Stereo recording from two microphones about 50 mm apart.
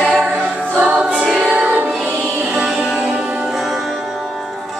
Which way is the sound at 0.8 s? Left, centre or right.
Right.